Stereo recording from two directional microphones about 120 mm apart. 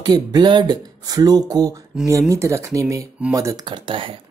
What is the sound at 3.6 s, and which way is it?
Speech, 40° right (ahead or behind).